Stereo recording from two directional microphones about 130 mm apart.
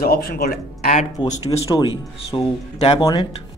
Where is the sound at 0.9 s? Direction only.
65° left (ahead or behind).